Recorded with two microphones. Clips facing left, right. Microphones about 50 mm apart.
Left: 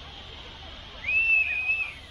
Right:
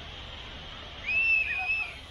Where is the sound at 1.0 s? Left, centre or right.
Centre.